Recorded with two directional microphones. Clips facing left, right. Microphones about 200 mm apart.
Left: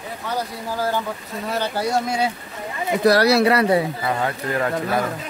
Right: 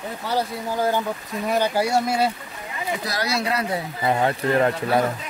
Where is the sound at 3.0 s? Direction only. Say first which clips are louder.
Left 14 dB; 65° left (ahead or behind).